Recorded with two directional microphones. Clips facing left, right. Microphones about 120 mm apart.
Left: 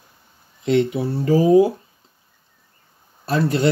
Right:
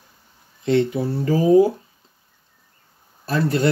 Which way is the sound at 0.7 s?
15° left (ahead or behind).